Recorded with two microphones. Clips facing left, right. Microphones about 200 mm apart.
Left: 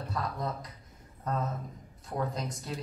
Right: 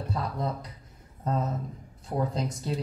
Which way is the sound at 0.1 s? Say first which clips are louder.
Right 3 dB; 30° right (ahead or behind).